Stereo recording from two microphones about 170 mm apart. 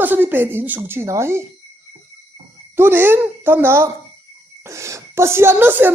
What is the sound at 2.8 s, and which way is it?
Speech, 15° right (ahead or behind).